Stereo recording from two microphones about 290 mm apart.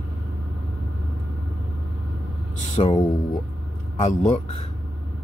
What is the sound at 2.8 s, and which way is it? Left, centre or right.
Speech, centre.